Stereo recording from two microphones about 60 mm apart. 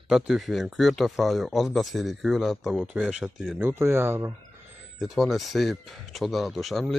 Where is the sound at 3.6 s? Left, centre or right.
Right.